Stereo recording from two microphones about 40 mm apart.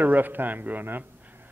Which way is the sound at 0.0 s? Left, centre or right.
Right.